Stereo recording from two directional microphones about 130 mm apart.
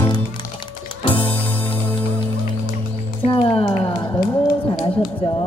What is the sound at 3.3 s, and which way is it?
Music, 40° left (ahead or behind).